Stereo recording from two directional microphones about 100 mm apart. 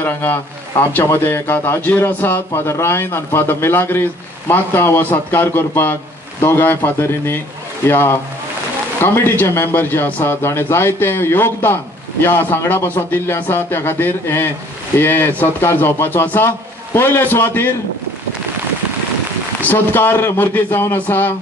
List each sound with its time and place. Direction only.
0.0 s speech: 20° left (ahead or behind)
19.6 s speech: 20° left (ahead or behind)